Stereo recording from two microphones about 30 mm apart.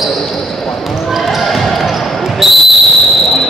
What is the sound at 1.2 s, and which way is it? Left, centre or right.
Basketball bounce, centre.